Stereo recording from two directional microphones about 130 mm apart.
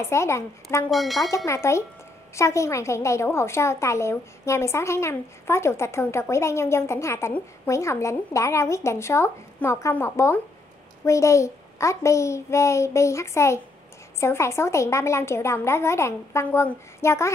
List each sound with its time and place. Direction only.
0.0 s a woman's voice: 20° left (ahead or behind)
0.8 s speech: centre (ahead or behind)
1.3 s a woman's voice: 20° left (ahead or behind)